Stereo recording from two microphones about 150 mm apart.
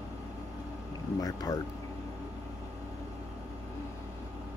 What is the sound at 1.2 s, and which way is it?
Speech, 25° left (ahead or behind).